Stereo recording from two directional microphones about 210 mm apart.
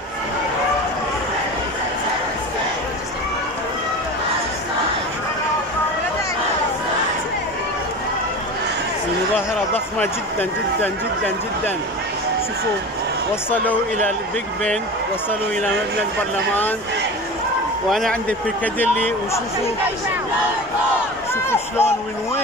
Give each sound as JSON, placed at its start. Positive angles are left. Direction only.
{"t": 10.8, "sound": "speech", "side_deg": 10}
{"t": 17.8, "sound": "speech", "side_deg": 0}
{"t": 21.5, "sound": "speech", "side_deg": 10}